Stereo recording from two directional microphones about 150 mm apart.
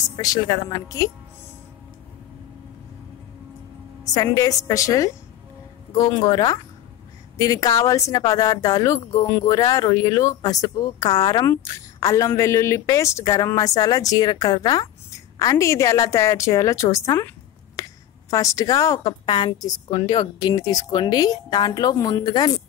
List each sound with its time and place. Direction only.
0.1 s a woman's voice: 25° left (ahead or behind)
4.0 s a woman's voice: 25° left (ahead or behind)
17.8 s a sound: 25° left (ahead or behind)
18.3 s a woman's voice: 20° left (ahead or behind)